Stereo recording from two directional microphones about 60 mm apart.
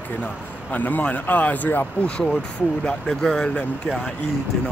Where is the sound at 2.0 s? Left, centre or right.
Centre.